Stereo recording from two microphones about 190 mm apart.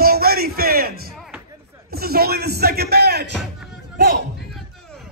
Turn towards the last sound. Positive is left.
turn(degrees=-50)  # may be behind; listen again after turning